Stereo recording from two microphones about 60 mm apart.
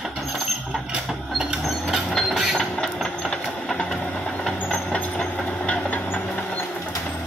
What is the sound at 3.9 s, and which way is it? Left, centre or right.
Vehicle, centre.